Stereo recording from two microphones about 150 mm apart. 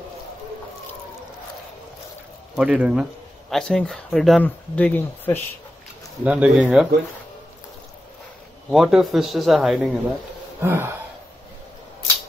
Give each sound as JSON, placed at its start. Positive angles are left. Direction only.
{"t": 2.5, "sound": "speech", "side_deg": -10}
{"t": 6.2, "sound": "speech", "side_deg": -10}
{"t": 8.6, "sound": "speech", "side_deg": -5}
{"t": 10.6, "sound": "speech", "side_deg": -15}